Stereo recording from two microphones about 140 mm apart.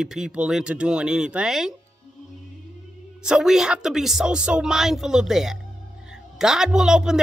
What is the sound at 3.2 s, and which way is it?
Speech, 5° right (ahead or behind).